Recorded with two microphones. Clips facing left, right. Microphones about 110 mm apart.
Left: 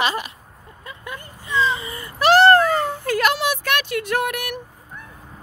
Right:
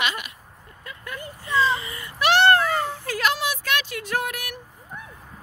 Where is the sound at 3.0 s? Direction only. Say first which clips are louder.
Left 7 dB; 55° left (ahead or behind).